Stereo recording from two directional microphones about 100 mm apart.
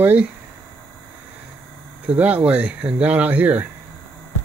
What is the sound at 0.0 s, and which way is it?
Speech, 15° right (ahead or behind).